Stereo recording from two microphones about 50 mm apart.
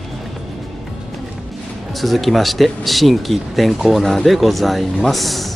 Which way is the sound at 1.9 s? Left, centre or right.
Centre.